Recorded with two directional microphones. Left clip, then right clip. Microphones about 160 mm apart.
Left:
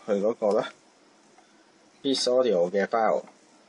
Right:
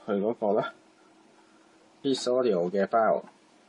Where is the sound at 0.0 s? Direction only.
40° right (ahead or behind).